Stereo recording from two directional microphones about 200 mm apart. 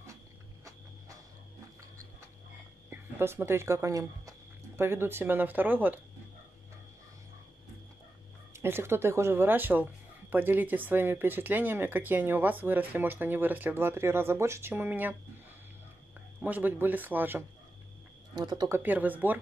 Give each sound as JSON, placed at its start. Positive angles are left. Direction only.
{"t": 2.9, "sound": "speech", "side_deg": -10}
{"t": 8.5, "sound": "speech", "side_deg": -10}
{"t": 16.3, "sound": "speech", "side_deg": -10}
{"t": 18.3, "sound": "speech", "side_deg": -20}
{"t": 18.8, "sound": "speech", "side_deg": -10}